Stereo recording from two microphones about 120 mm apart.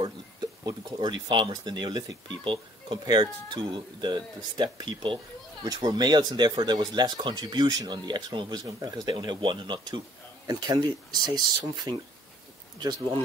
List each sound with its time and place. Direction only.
0.7 s speech: 35° right (ahead or behind)